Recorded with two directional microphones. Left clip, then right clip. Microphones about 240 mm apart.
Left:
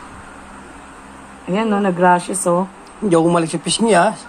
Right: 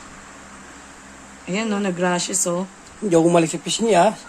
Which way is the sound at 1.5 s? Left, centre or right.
Right.